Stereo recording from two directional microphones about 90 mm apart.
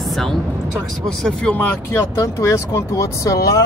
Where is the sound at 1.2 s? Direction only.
15° left (ahead or behind).